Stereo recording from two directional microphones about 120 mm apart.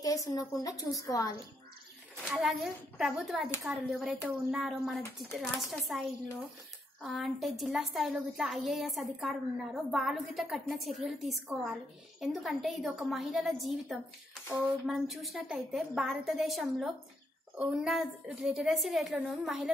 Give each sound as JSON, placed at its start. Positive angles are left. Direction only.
{"t": 0.0, "sound": "a woman's voice", "side_deg": 30}
{"t": 2.2, "sound": "a woman's voice", "side_deg": 0}